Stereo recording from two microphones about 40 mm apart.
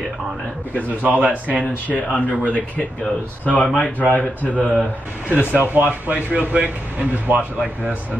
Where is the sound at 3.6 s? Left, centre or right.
Left.